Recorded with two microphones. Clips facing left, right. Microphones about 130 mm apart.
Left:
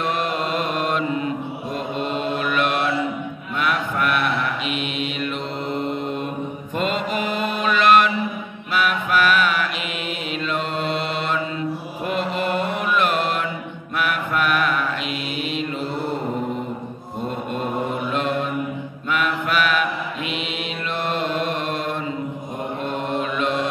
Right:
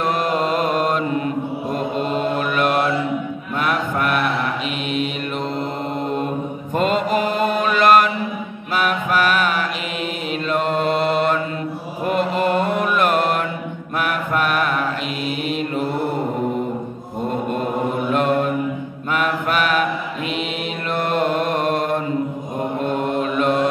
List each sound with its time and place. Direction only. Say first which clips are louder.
0.0 s mantra: right 4 dB; 40° right (ahead or behind)
6.7 s mantra: right 5 dB; 45° right (ahead or behind)
18.1 s mantra: right 6 dB; 50° right (ahead or behind)
20.9 s mantra: right 5 dB; 50° right (ahead or behind)